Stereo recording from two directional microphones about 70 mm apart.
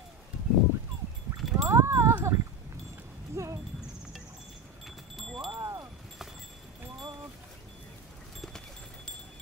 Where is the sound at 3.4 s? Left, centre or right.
Right.